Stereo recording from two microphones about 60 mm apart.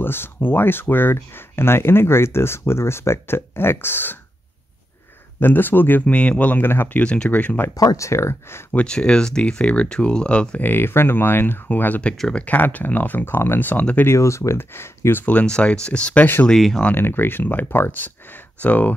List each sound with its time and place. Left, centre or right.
0.0 s speech: left
5.4 s speech: left
6.6 s speech: left
7.0 s speech: centre
7.7 s speech: left
8.1 s speech: left
8.7 s speech: centre
10.6 s speech: left
14.0 s speech: left
14.6 s speech: left
15.4 s speech: centre
16.5 s speech: centre
16.9 s speech: left